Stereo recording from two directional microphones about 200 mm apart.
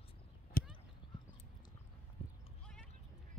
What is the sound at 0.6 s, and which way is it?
Clip-clop, 45° left (ahead or behind).